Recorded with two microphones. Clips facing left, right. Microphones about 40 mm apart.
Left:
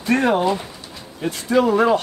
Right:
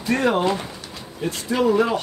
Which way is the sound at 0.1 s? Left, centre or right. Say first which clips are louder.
Left 2 dB; left.